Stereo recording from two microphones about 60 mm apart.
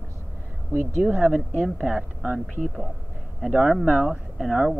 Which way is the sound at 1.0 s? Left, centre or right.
Centre.